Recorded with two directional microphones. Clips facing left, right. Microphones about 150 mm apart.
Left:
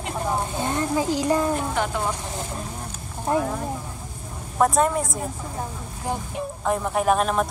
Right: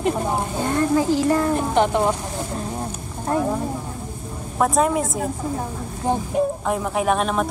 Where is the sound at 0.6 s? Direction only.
20° left (ahead or behind).